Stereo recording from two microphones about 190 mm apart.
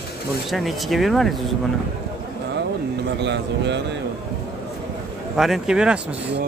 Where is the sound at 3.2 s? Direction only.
65° right (ahead or behind).